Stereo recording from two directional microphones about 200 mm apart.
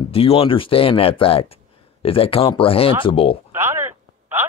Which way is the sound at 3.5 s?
10° right (ahead or behind).